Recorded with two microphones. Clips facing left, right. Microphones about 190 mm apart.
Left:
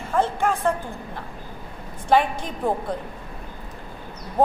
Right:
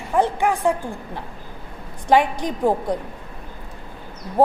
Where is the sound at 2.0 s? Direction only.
15° right (ahead or behind).